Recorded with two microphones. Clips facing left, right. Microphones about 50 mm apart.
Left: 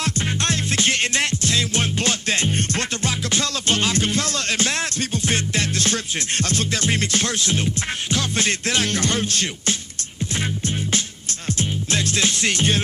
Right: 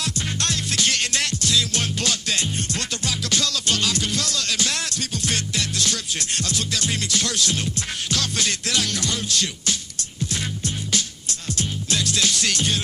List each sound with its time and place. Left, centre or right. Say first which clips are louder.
0.0 s music: left 3 dB; left
11.4 s music: left 3 dB; left